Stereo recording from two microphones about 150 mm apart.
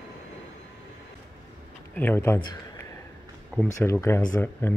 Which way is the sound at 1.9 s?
15° left (ahead or behind).